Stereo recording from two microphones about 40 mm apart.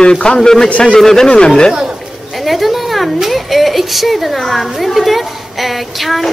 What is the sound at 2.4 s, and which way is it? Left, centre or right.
Speech, centre.